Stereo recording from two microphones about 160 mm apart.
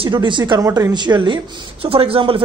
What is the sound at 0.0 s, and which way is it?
A man's voice, 30° right (ahead or behind).